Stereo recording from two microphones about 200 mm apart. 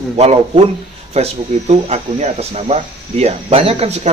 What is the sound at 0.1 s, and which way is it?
Speech, 30° right (ahead or behind).